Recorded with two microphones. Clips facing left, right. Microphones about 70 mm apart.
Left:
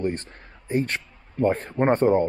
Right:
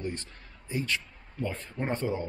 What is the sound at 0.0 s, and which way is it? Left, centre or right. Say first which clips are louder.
A man's voice: left 9 dB; left.